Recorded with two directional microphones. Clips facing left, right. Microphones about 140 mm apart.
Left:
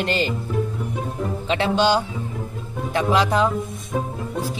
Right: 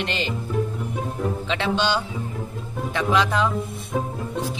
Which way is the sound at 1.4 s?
40° left (ahead or behind).